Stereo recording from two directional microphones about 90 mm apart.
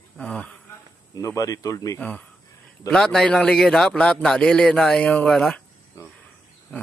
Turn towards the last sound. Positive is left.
turn(degrees=25)  # may be behind; listen again after turning